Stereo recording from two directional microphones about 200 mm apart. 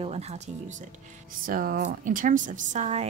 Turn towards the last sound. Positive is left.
turn(degrees=-35)  # may be behind; listen again after turning